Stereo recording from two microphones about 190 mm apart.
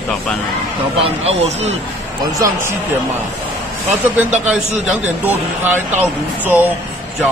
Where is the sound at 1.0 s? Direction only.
35° right (ahead or behind).